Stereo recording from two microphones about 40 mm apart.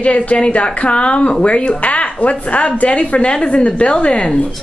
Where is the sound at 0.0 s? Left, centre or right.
Left.